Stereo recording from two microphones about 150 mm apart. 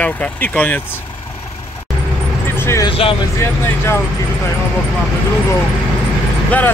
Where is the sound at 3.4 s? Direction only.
15° left (ahead or behind).